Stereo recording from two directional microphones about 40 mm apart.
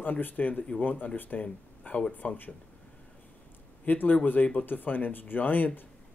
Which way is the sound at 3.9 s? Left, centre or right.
Left.